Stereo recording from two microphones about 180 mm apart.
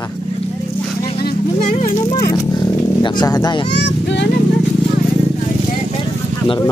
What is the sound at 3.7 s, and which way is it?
Speech, 75° left (ahead or behind).